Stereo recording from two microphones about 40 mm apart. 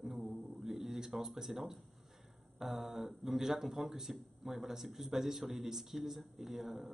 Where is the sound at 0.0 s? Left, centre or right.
Centre.